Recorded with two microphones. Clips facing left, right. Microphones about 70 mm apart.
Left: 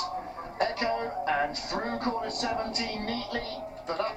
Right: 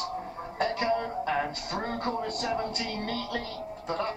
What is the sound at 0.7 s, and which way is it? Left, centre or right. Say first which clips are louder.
Music: right 1 dB; centre.